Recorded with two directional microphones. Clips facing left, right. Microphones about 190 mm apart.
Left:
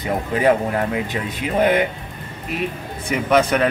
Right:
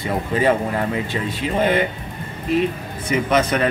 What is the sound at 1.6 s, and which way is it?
Speech, 15° left (ahead or behind).